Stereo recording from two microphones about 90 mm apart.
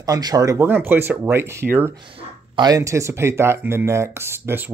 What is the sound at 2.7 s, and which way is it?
Speech, 35° right (ahead or behind).